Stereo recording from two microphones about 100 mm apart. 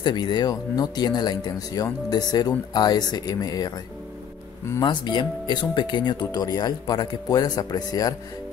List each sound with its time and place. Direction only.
0.0 s speech: 50° left (ahead or behind)
4.8 s speech: 50° left (ahead or behind)